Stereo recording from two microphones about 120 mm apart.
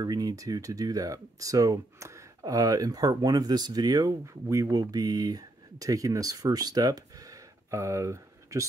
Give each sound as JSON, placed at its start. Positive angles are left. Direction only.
{"t": 0.0, "sound": "speech", "side_deg": -35}